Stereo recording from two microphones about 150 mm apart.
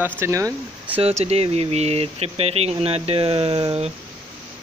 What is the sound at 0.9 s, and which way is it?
Speech, 45° right (ahead or behind).